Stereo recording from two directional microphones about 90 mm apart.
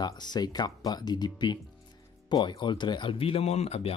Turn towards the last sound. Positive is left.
turn(degrees=90)